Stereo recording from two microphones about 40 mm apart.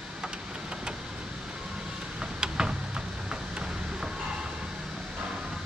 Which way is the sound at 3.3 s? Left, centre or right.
Right.